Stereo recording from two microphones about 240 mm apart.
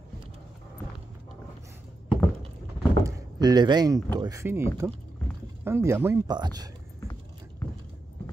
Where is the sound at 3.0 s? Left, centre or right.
Centre.